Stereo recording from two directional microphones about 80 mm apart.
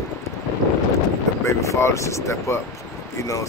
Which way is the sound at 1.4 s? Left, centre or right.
Left.